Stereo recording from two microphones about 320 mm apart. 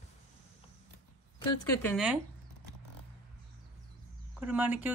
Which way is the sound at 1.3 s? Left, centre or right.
Centre.